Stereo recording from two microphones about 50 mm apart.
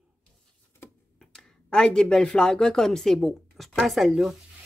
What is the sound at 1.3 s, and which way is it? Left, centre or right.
Speech, centre.